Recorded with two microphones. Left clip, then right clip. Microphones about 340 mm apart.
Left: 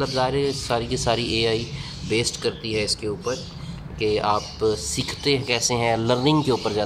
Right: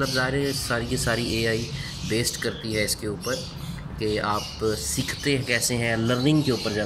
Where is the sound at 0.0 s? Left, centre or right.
Left.